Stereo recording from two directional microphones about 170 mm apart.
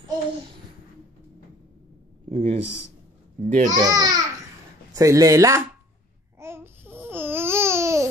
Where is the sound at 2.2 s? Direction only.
35° right (ahead or behind).